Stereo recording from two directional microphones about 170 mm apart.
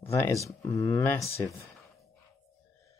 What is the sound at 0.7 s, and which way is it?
Speech, 15° left (ahead or behind).